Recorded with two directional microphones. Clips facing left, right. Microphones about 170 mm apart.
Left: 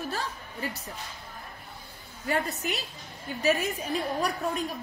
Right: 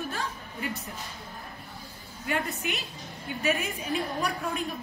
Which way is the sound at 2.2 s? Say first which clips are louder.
Left 1 dB; 35° left (ahead or behind).